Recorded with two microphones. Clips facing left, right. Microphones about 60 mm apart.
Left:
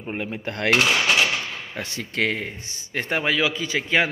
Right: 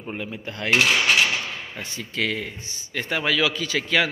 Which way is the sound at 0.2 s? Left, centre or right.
Left.